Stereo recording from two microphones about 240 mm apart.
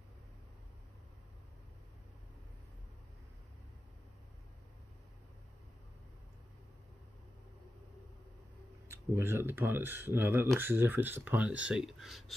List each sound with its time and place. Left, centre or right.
8.8 s speech: centre